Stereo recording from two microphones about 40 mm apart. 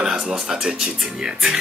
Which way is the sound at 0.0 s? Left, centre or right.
Centre.